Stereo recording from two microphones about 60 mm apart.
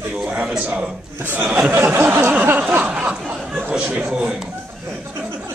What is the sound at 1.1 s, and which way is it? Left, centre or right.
Speech, right.